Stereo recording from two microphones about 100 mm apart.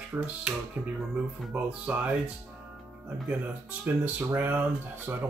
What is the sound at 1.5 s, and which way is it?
Speech, 15° right (ahead or behind).